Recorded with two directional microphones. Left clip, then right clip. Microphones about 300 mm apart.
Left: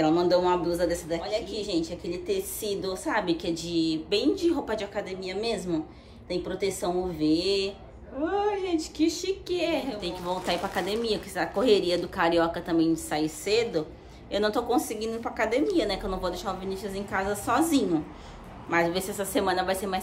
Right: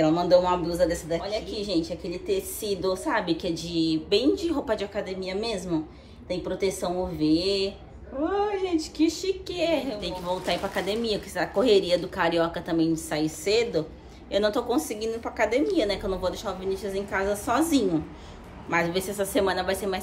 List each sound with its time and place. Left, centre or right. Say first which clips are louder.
0.0 s speech: right 2 dB; centre